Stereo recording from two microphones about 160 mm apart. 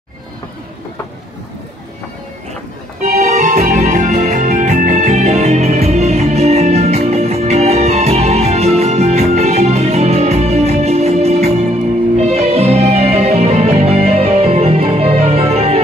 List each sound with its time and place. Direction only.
3.0 s music: 45° right (ahead or behind)